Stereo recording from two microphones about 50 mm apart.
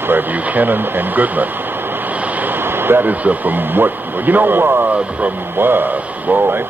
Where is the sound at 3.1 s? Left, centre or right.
Right.